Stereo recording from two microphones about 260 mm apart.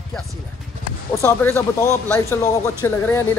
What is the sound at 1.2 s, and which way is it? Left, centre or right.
Speech, centre.